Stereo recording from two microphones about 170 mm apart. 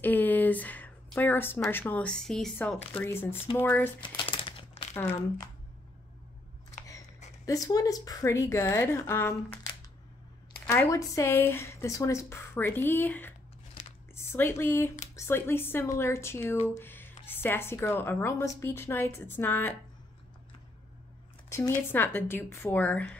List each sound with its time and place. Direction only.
0.0 s a sound: 10° left (ahead or behind)
1.7 s speech: 10° left (ahead or behind)
3.0 s speech: 15° left (ahead or behind)
4.0 s crumpling: 30° left (ahead or behind)
4.9 s speech: 15° left (ahead or behind)
7.4 s speech: 20° left (ahead or behind)
10.7 s speech: 15° left (ahead or behind)
16.6 s a sound: 10° left (ahead or behind)
17.3 s speech: 10° left (ahead or behind)
21.5 s a sound: 15° left (ahead or behind)
21.9 s speech: 10° left (ahead or behind)